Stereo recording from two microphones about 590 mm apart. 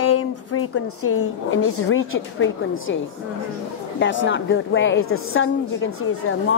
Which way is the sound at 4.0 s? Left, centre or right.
Centre.